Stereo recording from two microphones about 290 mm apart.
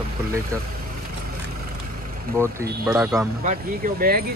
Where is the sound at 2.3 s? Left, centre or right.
Centre.